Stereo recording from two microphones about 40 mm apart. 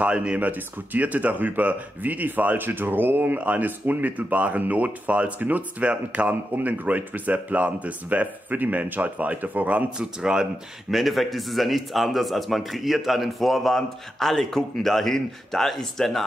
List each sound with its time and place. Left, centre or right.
0.0 s speech: right
0.4 s speech: right
3.3 s speech: right
6.5 s speech: right
9.9 s a man's voice: centre
10.9 s a man's voice: centre